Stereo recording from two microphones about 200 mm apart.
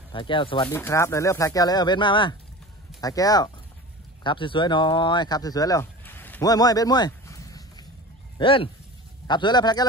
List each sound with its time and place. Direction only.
0.1 s a man's voice: 25° left (ahead or behind)
0.7 s a man's voice: 15° left (ahead or behind)